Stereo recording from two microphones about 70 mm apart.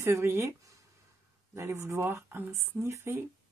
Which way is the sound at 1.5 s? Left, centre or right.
Right.